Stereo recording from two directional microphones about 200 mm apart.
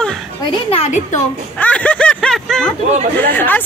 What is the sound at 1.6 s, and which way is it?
A woman's voice, 5° left (ahead or behind).